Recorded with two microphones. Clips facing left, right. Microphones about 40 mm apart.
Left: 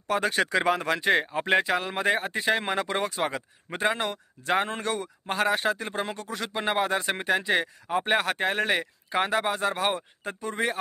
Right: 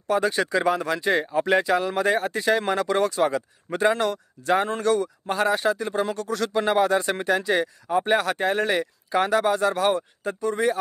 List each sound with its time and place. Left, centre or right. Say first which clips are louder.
0.1 s speech: right 2 dB; left